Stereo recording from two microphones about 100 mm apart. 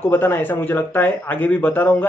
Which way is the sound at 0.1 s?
20° left (ahead or behind).